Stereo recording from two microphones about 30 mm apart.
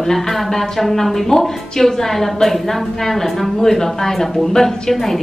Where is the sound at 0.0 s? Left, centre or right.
Centre.